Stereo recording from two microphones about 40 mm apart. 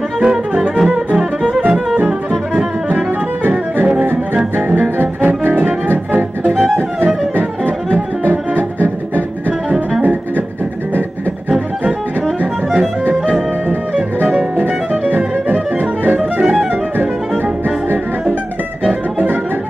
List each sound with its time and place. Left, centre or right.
0.2 s music: centre
3.4 s music: right
4.6 s double bass: right
5.5 s music: right
7.3 s music: right
14.6 s music: right
16.2 s music: right